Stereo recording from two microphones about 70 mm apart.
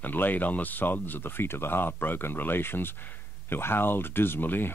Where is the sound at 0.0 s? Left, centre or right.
Left.